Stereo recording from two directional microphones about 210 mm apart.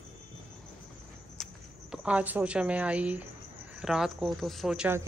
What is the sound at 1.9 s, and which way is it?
Speech, 5° right (ahead or behind).